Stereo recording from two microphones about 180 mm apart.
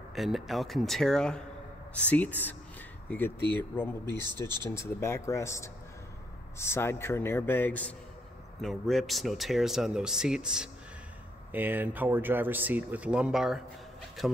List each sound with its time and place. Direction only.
0.1 s speech: centre (ahead or behind)
4.0 s speech: 20° right (ahead or behind)
4.6 s speech: 15° left (ahead or behind); by 13.6 s 5° right (ahead or behind)